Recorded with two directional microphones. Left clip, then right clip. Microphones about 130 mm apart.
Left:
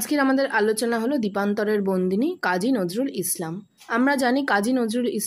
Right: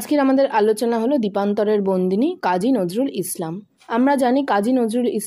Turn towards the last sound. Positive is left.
turn(degrees=-25)  # may be behind; listen again after turning